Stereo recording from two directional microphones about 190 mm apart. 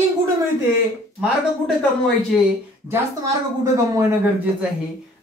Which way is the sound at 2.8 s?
15° right (ahead or behind).